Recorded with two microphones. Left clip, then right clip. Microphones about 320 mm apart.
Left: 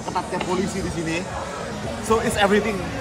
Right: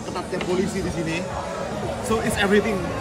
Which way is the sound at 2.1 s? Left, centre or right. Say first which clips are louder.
Left 3 dB; centre.